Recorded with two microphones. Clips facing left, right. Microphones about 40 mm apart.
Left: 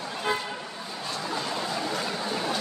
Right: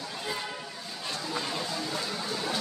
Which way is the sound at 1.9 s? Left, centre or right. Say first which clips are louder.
Left 4 dB; left.